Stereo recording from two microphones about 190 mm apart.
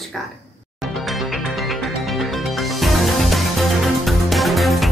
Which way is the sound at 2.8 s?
Centre (ahead or behind).